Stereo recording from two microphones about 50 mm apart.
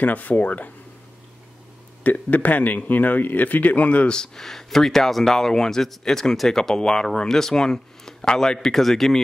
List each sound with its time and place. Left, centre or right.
0.0 s speech: left
2.0 s speech: left
4.2 s speech: centre